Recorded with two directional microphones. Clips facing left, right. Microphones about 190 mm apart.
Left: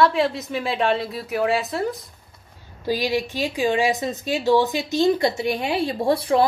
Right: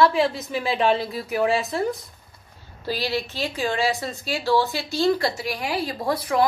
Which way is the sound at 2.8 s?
15° left (ahead or behind).